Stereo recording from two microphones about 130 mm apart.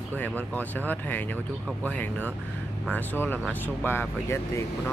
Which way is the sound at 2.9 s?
15° left (ahead or behind).